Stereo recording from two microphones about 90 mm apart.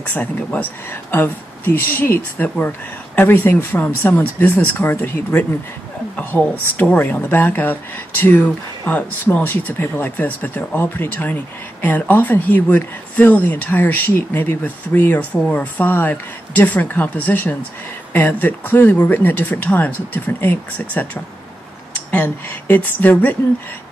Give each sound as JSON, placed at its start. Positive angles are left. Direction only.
{"t": 0.0, "sound": "speech", "side_deg": 15}
{"t": 6.3, "sound": "speech", "side_deg": 10}
{"t": 6.8, "sound": "speech", "side_deg": 20}